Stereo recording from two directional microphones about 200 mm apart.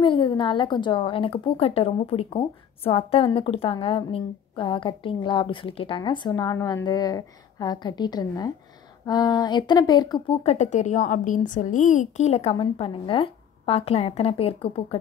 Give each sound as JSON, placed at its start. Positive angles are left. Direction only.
{"t": 0.0, "sound": "a woman's voice", "side_deg": 25}
{"t": 10.4, "sound": "a woman's voice", "side_deg": 35}